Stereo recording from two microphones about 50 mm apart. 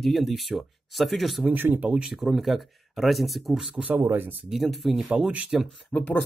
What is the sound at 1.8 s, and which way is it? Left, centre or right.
Speech, right.